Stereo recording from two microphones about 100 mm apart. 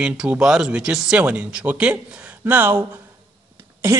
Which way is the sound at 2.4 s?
25° right (ahead or behind).